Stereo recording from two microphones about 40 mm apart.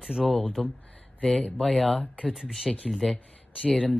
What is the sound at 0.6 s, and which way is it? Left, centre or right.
Speech, centre.